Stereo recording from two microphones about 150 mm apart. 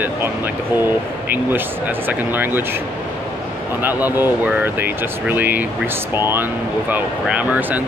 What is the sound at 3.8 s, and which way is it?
Speech, 15° right (ahead or behind).